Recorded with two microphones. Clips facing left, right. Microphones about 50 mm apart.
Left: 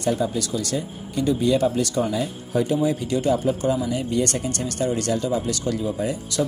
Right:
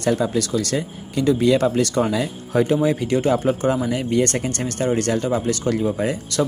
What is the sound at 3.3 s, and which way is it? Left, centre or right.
Speech, right.